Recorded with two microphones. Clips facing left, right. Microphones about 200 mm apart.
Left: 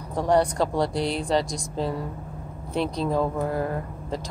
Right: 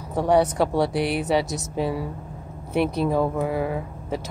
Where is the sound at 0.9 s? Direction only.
65° right (ahead or behind).